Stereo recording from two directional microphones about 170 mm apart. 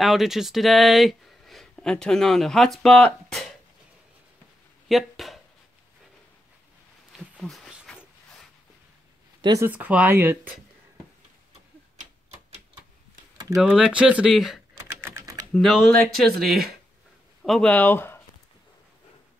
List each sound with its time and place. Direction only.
0.0 s speech: centre (ahead or behind)
4.8 s a sound: centre (ahead or behind)
7.1 s a sound: centre (ahead or behind)
9.4 s speech: 20° right (ahead or behind)
9.7 s speech: 10° right (ahead or behind)
12.0 s typewriter: 40° right (ahead or behind)
13.6 s speech: 5° right (ahead or behind)
14.8 s typing: 15° right (ahead or behind)
15.5 s speech: centre (ahead or behind)